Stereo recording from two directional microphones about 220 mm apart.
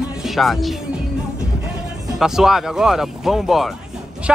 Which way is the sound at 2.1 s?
Centre (ahead or behind).